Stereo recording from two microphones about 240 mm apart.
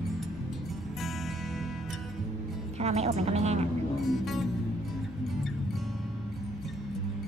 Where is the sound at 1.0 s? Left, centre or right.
Centre.